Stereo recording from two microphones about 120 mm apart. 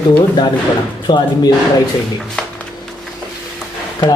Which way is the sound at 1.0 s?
40° left (ahead or behind).